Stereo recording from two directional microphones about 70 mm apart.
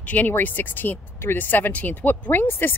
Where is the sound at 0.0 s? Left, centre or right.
Left.